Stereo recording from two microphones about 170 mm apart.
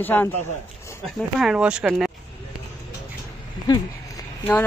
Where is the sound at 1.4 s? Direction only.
5° right (ahead or behind).